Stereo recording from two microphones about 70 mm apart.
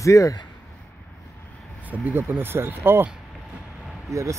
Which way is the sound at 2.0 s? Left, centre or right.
Right.